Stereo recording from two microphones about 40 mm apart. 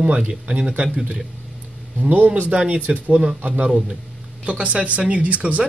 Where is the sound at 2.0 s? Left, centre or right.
Right.